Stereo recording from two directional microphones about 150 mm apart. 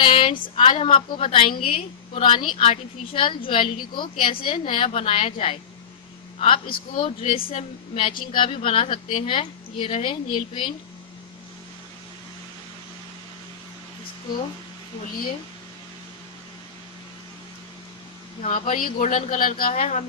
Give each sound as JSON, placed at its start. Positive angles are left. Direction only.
{"t": 0.0, "sound": "a woman's voice", "side_deg": 35}
{"t": 7.0, "sound": "a woman's voice", "side_deg": 40}
{"t": 18.4, "sound": "speech", "side_deg": 60}
{"t": 19.7, "sound": "speech", "side_deg": 50}